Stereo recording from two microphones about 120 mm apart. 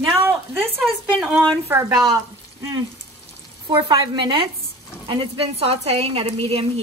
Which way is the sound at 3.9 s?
40° right (ahead or behind).